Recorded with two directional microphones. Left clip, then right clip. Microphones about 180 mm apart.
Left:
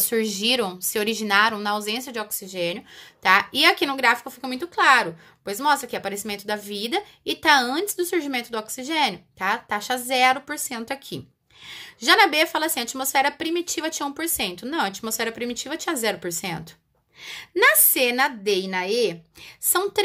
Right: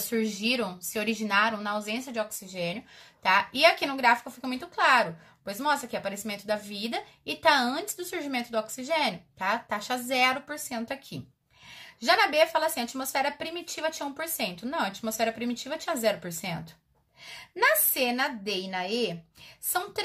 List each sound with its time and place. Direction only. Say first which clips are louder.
0.1 s a woman's voice: left 6 dB; 45° left (ahead or behind)